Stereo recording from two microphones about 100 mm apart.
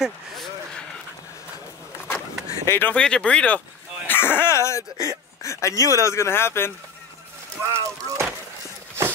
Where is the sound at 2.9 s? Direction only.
10° left (ahead or behind).